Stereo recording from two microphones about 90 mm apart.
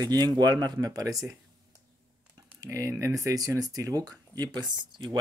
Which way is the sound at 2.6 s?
35° right (ahead or behind).